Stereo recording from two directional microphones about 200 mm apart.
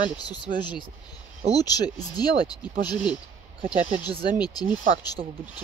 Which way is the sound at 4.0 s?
20° left (ahead or behind).